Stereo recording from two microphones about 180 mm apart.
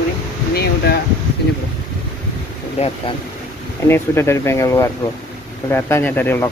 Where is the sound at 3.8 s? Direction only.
15° left (ahead or behind).